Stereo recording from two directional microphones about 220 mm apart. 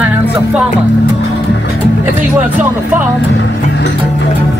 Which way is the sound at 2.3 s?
5° right (ahead or behind).